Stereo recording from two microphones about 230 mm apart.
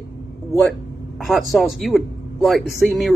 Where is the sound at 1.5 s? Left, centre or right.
Centre.